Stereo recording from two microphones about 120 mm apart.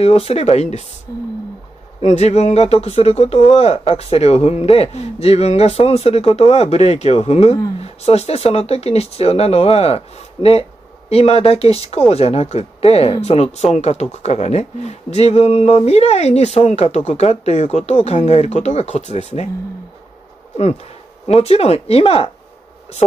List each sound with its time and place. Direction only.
0.0 s speech: 55° left (ahead or behind)
2.0 s speech: 65° left (ahead or behind)
21.3 s speech: 55° left (ahead or behind)